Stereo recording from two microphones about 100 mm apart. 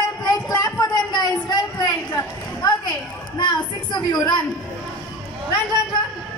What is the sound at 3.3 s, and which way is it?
A woman's voice, 45° left (ahead or behind).